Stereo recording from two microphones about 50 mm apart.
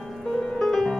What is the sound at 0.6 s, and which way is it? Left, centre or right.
Music, centre.